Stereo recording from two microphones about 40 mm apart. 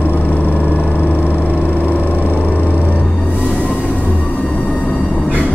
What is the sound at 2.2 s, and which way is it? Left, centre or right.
Vehicle, left.